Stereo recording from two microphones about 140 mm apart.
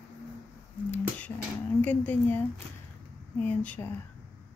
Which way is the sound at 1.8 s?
10° left (ahead or behind).